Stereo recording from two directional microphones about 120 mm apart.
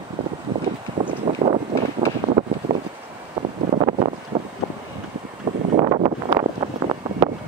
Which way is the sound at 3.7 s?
60° right (ahead or behind).